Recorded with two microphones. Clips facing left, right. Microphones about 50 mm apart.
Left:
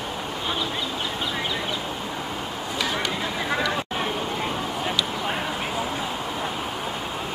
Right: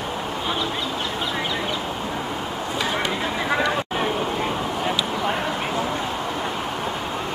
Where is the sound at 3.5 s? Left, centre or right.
Centre.